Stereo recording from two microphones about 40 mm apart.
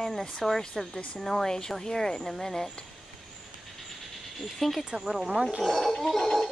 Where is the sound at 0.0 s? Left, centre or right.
Centre.